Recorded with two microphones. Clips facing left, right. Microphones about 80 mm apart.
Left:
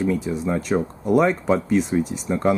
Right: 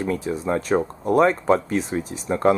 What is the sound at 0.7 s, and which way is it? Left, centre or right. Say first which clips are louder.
Speech: right 1 dB; right.